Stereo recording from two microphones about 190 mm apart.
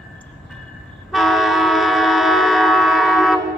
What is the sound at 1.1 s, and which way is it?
Train, centre (ahead or behind).